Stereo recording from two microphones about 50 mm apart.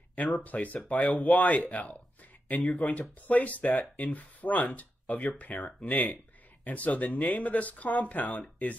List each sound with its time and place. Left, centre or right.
0.1 s speech: left